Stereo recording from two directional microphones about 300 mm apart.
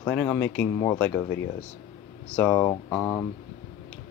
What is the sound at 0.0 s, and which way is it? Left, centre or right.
Speech, centre.